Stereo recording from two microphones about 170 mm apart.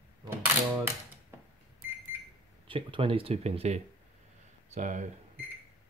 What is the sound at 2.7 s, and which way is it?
Speech, 30° right (ahead or behind).